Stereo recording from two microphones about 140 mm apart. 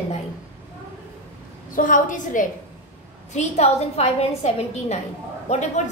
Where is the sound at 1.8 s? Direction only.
70° left (ahead or behind).